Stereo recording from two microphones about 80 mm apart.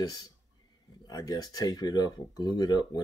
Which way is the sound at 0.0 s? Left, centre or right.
Left.